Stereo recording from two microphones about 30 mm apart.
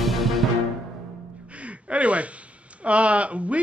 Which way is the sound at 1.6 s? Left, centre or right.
Right.